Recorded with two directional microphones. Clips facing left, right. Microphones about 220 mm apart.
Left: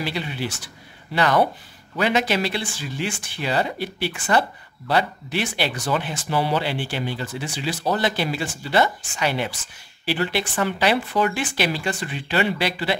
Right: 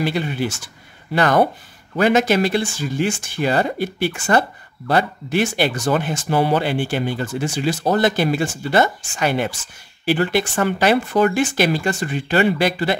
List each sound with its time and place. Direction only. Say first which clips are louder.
0.0 s speech: right 6 dB; 50° right (ahead or behind)